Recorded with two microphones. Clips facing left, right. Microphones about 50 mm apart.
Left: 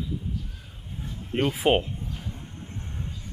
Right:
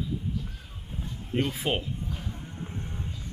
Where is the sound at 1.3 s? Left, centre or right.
Left.